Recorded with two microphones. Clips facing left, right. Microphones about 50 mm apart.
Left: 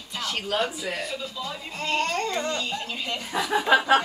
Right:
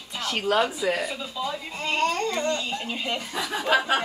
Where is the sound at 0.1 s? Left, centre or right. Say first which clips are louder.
Right 2 dB; centre.